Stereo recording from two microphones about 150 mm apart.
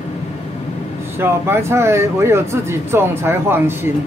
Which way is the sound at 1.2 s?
15° right (ahead or behind).